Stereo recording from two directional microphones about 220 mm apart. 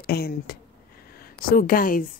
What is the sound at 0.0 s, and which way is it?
Speech, 45° left (ahead or behind).